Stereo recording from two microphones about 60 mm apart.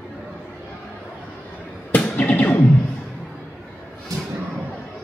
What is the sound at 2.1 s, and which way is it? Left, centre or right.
Music, left.